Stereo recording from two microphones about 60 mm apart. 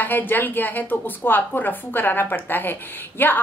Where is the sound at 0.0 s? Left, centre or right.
Left.